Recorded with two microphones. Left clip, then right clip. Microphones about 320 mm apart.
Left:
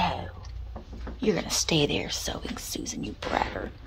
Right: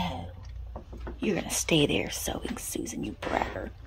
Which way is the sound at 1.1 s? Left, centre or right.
Centre.